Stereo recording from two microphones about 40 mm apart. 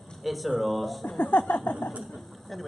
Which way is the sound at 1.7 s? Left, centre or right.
Left.